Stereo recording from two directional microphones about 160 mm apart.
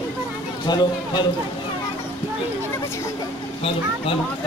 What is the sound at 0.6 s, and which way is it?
Speech, 25° left (ahead or behind).